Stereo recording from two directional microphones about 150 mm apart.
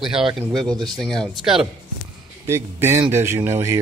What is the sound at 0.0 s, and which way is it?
Speech, 5° right (ahead or behind).